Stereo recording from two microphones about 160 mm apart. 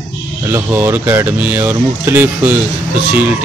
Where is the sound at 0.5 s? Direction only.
15° right (ahead or behind).